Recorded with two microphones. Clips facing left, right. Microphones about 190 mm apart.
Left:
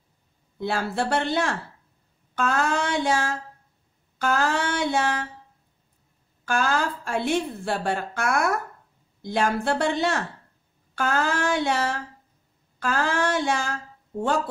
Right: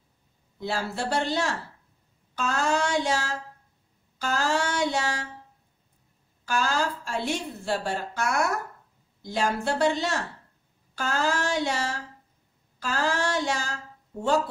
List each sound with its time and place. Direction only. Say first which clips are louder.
0.6 s a woman's voice: left 4 dB; 55° left (ahead or behind)
6.4 s a woman's voice: left 2 dB; 55° left (ahead or behind)